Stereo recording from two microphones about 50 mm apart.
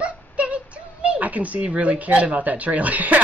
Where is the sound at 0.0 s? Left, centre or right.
Right.